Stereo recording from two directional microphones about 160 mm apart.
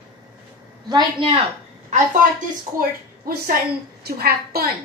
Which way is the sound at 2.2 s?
55° right (ahead or behind).